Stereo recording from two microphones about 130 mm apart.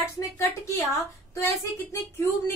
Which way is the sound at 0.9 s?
20° left (ahead or behind).